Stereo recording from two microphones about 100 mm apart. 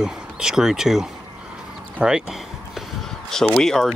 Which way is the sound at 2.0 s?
5° right (ahead or behind).